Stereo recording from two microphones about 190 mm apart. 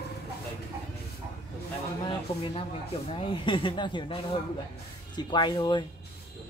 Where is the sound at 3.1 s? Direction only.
25° left (ahead or behind).